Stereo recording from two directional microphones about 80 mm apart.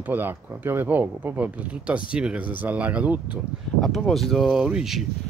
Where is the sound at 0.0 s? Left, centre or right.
Right.